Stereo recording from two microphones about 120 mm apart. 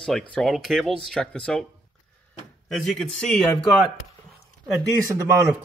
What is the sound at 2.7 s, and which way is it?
Speech, 5° left (ahead or behind).